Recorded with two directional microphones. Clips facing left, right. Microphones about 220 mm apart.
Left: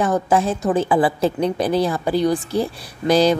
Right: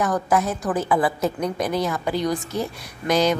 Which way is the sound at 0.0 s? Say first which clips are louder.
Left 3 dB; 30° left (ahead or behind).